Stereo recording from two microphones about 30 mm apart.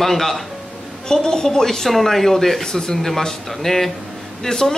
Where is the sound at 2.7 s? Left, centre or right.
Left.